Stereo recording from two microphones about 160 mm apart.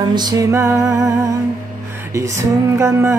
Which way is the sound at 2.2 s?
20° right (ahead or behind).